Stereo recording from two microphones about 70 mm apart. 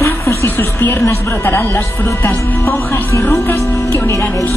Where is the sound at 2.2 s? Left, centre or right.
Left.